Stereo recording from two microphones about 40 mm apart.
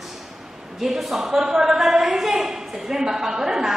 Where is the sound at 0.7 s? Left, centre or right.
Centre.